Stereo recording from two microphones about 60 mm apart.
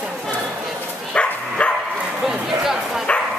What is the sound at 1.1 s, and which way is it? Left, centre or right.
Bow-wow, centre.